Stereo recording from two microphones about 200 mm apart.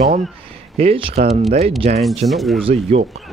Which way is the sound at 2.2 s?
Centre (ahead or behind).